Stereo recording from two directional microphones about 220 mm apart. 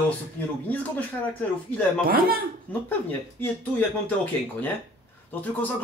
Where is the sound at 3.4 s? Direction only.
10° left (ahead or behind).